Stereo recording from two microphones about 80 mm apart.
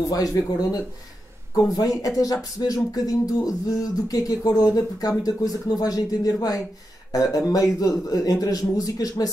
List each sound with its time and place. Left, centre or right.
0.1 s speech: left